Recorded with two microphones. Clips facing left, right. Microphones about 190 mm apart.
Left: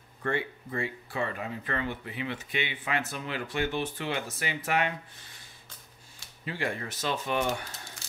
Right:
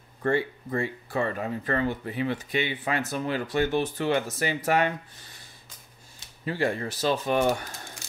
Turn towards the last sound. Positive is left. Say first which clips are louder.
# right 6 dB
turn(degrees=-40)  # may be behind; listen again after turning